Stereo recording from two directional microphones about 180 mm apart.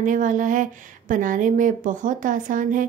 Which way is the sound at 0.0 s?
45° right (ahead or behind).